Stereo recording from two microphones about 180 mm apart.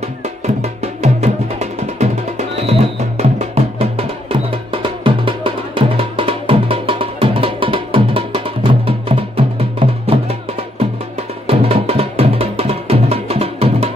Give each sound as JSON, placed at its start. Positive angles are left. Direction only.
{"t": 0.6, "sound": "music", "side_deg": -35}
{"t": 4.8, "sound": "music", "side_deg": -30}
{"t": 11.4, "sound": "music", "side_deg": -35}